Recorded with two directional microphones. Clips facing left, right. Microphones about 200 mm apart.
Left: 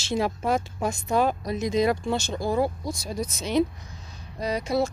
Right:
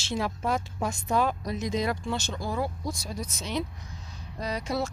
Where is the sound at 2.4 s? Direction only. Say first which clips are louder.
Left 7 dB; 30° left (ahead or behind).